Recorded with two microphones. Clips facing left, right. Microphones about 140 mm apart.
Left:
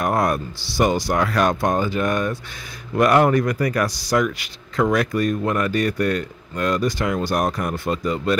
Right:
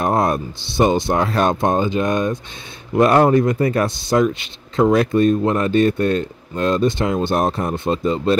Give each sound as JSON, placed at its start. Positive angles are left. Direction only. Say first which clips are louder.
{"t": 0.0, "sound": "speech", "louder": "right 2 dB", "side_deg": -25}